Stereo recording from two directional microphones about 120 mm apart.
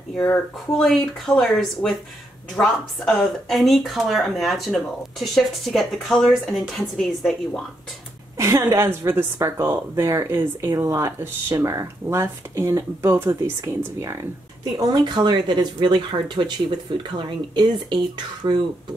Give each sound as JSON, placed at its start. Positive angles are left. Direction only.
{"t": 0.7, "sound": "speech", "side_deg": 5}
{"t": 8.4, "sound": "speech", "side_deg": -25}
{"t": 14.6, "sound": "speech", "side_deg": -35}